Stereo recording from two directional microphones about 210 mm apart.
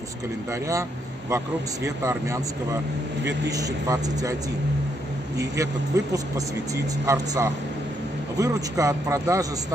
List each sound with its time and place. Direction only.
0.5 s speech: 15° right (ahead or behind)
2.0 s speech: 15° right (ahead or behind)
5.4 s speech: 15° right (ahead or behind)